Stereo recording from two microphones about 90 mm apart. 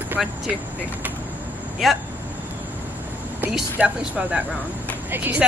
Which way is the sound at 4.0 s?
15° right (ahead or behind).